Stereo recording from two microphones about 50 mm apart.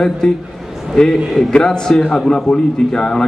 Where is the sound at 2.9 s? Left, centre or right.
Centre.